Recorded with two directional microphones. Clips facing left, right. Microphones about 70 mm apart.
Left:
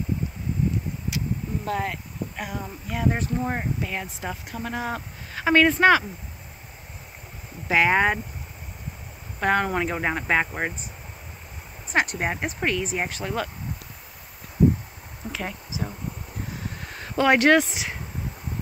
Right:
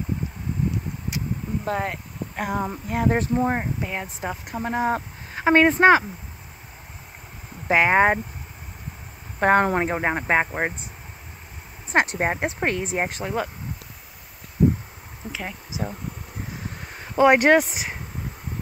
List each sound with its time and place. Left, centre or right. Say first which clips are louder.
1.1 s a sound: right 1 dB; right
2.3 s speech: right 11 dB; right
3.4 s speech: right 3 dB; right
7.6 s speech: right 2 dB; right
9.4 s speech: right 4 dB; right
11.9 s speech: right 3 dB; right
13.2 s speech: right 2 dB; centre
17.1 s speech: right 2 dB; centre